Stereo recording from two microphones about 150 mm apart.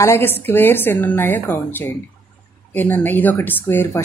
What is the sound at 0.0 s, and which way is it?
A woman's voice, 15° left (ahead or behind).